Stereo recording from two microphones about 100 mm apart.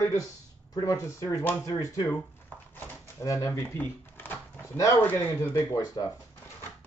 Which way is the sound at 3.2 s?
35° left (ahead or behind).